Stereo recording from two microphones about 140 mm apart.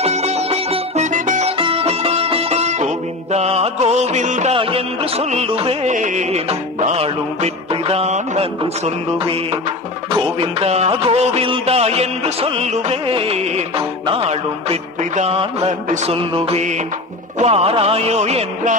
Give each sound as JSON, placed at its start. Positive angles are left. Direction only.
{"t": 0.0, "sound": "music", "side_deg": -50}
{"t": 1.6, "sound": "music", "side_deg": -40}
{"t": 4.6, "sound": "music", "side_deg": -40}
{"t": 5.9, "sound": "music", "side_deg": -60}